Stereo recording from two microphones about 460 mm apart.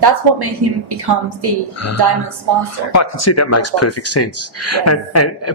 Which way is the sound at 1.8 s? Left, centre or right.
Left.